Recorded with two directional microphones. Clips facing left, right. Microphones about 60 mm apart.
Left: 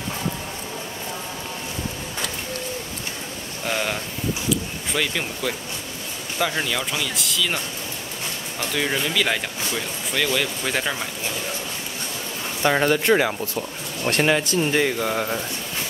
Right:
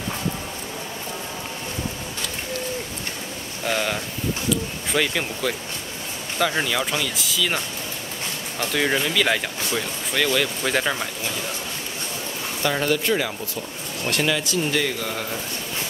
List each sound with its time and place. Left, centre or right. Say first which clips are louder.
3.6 s speech: right 1 dB; centre
4.5 s a sound: even; centre
6.5 s speech: right 2 dB; centre
8.7 s speech: right 2 dB; centre
12.6 s speech: left 3 dB; left
13.0 s speech: left 4 dB; left
14.8 s speech: left 4 dB; left